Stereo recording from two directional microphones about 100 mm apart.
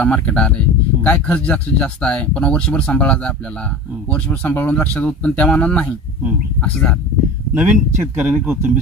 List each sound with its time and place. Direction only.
0.0 s speech: 10° left (ahead or behind)
7.5 s speech: 20° right (ahead or behind)